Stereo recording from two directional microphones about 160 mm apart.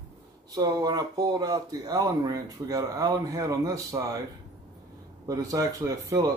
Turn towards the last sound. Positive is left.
turn(degrees=-20)  # may be behind; listen again after turning